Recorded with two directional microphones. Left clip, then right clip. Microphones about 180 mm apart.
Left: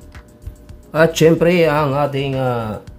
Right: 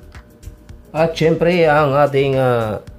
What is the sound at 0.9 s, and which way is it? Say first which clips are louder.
Speech: left 3 dB; 25° left (ahead or behind).